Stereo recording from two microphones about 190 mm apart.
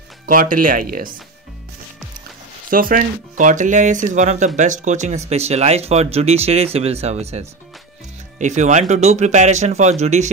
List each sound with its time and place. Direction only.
0.3 s speech: 45° right (ahead or behind)
2.7 s speech: 50° right (ahead or behind)